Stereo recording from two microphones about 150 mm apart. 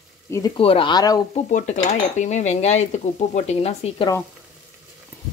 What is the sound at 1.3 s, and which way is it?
Cutlery, 50° left (ahead or behind).